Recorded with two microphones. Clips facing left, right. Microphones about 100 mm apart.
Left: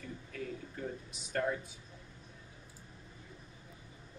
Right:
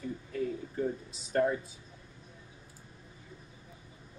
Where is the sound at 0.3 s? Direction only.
35° right (ahead or behind).